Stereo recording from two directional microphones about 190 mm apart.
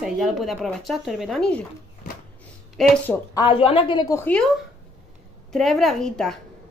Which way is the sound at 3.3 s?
25° left (ahead or behind).